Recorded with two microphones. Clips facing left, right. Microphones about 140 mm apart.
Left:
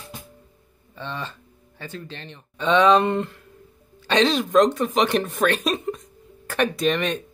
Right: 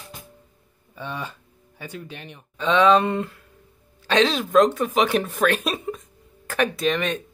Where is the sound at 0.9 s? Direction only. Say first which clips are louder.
Even; 10° right (ahead or behind).